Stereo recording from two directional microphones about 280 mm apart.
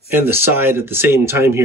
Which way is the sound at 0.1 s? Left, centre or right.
Centre.